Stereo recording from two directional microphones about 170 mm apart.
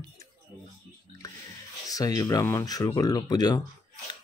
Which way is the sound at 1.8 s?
20° left (ahead or behind).